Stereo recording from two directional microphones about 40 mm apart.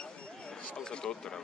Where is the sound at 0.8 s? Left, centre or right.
Left.